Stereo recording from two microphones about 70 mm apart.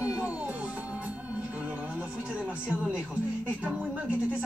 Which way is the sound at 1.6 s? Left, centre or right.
Right.